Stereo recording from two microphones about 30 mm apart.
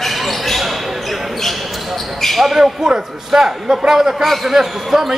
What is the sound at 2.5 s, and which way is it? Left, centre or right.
Speech, centre.